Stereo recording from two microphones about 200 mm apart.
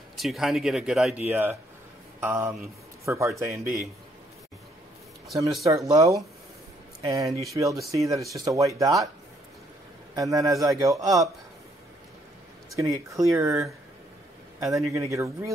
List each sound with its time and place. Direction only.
0.2 s a man's voice: centre (ahead or behind)
5.6 s a man's voice: 15° right (ahead or behind)
10.1 s a man's voice: 15° right (ahead or behind)
12.7 s a man's voice: 15° right (ahead or behind)